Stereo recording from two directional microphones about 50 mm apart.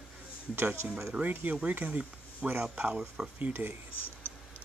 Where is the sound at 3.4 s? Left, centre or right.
Right.